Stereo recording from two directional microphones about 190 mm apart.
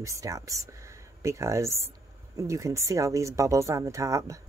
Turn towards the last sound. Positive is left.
turn(degrees=-15)  # may be behind; listen again after turning